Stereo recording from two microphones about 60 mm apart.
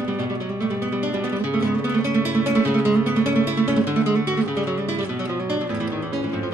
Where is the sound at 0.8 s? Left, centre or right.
Right.